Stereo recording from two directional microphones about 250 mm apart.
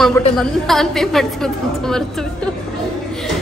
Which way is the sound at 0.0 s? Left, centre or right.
Centre.